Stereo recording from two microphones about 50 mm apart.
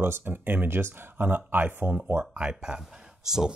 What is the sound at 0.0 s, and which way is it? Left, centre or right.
Speech, right.